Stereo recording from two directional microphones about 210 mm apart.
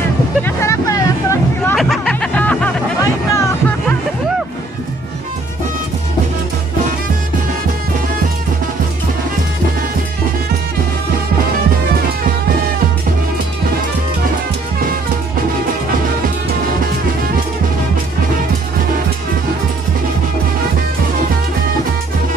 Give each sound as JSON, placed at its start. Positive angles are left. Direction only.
{"t": 0.4, "sound": "hubbub", "side_deg": 15}
{"t": 1.8, "sound": "music", "side_deg": 5}